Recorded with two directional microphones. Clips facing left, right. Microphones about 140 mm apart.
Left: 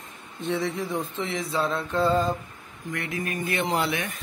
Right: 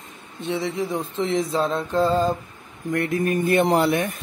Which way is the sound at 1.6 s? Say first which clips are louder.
Left 1 dB; 35° right (ahead or behind).